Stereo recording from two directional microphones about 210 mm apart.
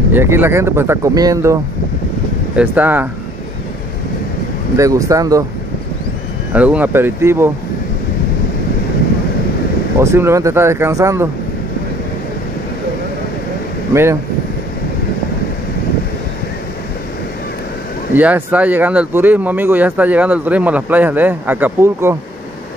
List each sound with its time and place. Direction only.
0.1 s speech: 10° right (ahead or behind)
4.7 s speech: 15° right (ahead or behind)
6.5 s speech: 5° right (ahead or behind)
9.9 s speech: 10° right (ahead or behind)
18.1 s speech: 5° right (ahead or behind)